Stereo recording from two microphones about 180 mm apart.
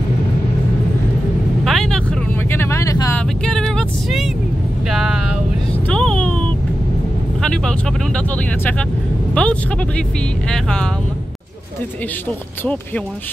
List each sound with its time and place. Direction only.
1.6 s vehicle: centre (ahead or behind); by 3.2 s 15° left (ahead or behind)
3.2 s vehicle: 5° left (ahead or behind)
5.9 s vehicle: 5° left (ahead or behind)
7.4 s vehicle: 5° left (ahead or behind)
9.3 s speech: 5° left (ahead or behind)